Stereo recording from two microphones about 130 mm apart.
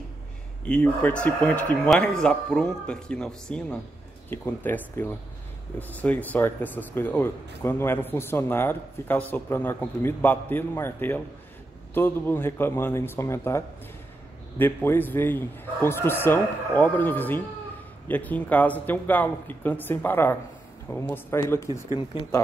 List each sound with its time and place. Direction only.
0.7 s speech: 5° left (ahead or behind)